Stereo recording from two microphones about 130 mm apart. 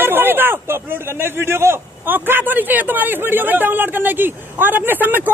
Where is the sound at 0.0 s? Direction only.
15° right (ahead or behind).